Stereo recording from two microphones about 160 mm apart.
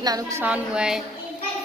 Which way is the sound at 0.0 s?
25° right (ahead or behind).